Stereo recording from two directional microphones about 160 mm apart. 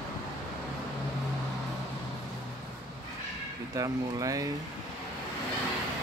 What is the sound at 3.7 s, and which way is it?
Speech, 20° right (ahead or behind).